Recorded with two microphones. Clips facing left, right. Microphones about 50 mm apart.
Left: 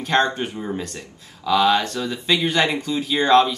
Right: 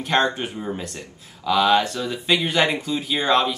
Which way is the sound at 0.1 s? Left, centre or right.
Centre.